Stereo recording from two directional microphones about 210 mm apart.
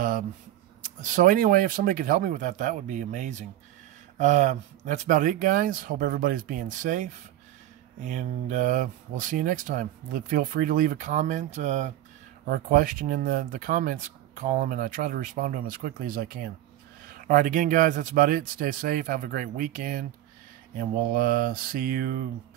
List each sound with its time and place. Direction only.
0.8 s speech: 35° right (ahead or behind)
21.1 s mantra: 45° right (ahead or behind)